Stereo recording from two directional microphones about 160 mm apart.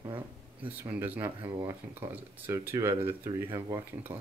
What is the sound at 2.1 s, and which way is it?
Speech, 10° right (ahead or behind).